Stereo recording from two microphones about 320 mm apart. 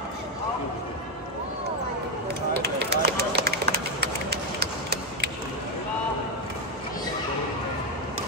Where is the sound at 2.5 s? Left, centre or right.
Right.